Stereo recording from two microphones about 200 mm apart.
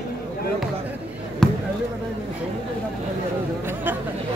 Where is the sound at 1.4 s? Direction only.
5° left (ahead or behind).